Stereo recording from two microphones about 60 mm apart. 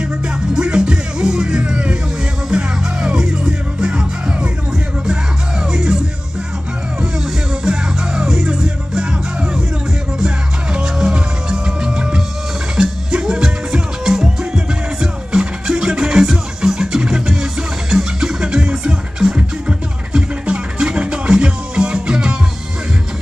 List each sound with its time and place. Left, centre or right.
0.6 s music: centre
7.6 s music: centre